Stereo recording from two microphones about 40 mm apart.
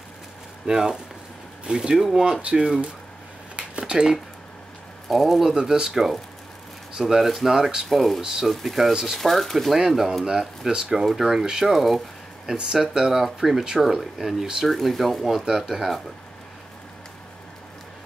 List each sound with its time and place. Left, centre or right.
0.7 s speech: centre
3.5 s a sound: right
5.0 s speech: centre
8.2 s speech: centre
8.5 s speech: centre
9.8 s speech: centre
12.9 s speech: centre
15.4 s speech: centre